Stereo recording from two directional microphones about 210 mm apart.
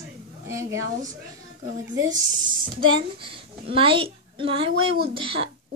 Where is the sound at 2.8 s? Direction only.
25° right (ahead or behind).